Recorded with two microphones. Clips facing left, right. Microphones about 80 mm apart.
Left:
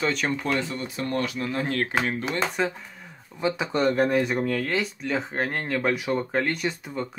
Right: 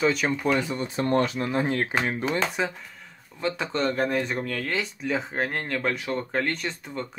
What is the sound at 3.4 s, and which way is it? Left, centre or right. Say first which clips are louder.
Speech: left 2 dB; centre.